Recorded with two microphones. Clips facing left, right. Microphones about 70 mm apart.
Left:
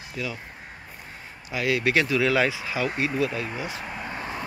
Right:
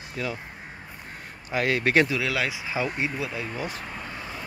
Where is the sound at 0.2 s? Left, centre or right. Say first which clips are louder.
Right 1 dB; right.